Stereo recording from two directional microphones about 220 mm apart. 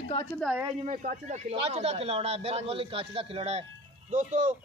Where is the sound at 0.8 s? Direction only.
35° right (ahead or behind).